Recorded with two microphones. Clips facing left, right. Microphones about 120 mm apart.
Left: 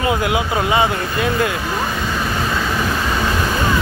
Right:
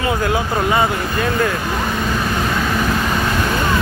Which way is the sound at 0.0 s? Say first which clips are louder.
Even; 15° left (ahead or behind).